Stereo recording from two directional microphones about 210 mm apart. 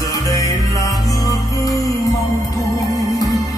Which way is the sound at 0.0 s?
15° left (ahead or behind).